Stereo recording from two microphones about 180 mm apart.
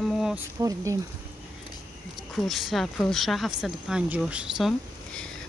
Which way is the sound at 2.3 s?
Centre (ahead or behind).